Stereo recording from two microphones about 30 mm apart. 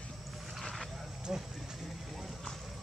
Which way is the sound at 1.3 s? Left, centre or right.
Centre.